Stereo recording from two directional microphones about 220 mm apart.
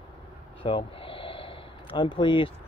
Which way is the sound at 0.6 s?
25° left (ahead or behind).